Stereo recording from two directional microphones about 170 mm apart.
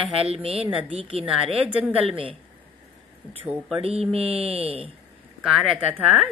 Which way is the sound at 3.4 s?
10° right (ahead or behind).